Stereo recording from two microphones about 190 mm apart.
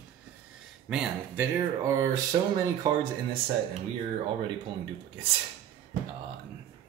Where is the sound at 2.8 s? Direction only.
20° right (ahead or behind).